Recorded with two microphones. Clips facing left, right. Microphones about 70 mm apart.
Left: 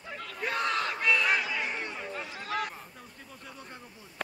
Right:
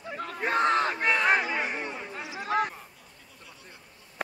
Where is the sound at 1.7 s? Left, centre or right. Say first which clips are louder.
Right 1 dB; centre.